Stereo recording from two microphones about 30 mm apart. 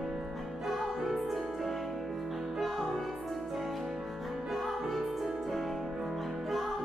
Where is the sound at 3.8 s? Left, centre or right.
Centre.